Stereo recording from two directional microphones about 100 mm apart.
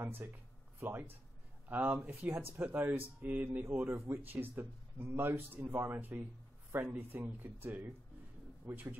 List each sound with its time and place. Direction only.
0.0 s speech: 20° right (ahead or behind)